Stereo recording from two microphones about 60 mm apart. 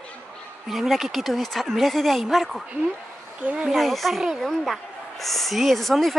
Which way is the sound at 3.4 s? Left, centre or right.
Centre.